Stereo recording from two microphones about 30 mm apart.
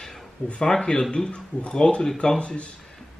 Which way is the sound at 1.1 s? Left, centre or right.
Left.